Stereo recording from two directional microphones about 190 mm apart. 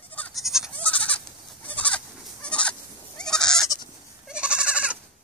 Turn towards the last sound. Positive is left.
turn(degrees=-5)  # may be behind; listen again after turning